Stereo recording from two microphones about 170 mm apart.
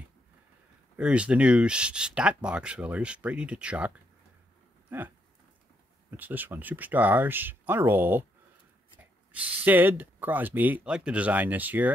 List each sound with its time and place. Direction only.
0.9 s speech: 5° right (ahead or behind)
4.8 s a sound: 10° right (ahead or behind)
6.0 s speech: 10° right (ahead or behind)
9.3 s speech: 10° right (ahead or behind)